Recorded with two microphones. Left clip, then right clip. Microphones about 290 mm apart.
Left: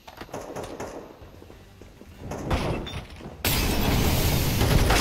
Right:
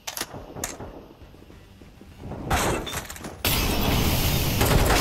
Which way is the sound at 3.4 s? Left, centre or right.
Centre.